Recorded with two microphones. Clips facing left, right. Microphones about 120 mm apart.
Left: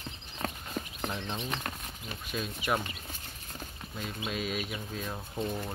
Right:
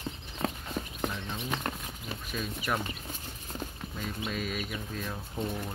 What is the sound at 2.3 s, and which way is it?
Speech, 5° left (ahead or behind).